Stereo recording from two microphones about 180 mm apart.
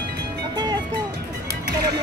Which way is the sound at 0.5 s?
25° right (ahead or behind).